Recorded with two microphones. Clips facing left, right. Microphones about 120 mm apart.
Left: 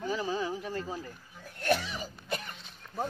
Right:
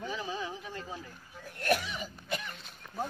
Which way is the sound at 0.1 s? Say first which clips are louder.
Left 8 dB; 35° left (ahead or behind).